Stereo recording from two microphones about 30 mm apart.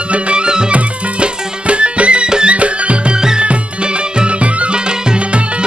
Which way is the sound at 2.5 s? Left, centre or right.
Right.